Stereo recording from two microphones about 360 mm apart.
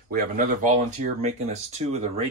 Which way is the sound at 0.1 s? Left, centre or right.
Right.